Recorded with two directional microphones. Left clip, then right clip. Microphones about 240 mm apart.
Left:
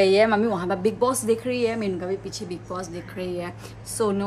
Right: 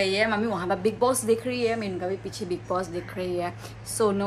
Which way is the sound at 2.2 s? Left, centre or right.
Centre.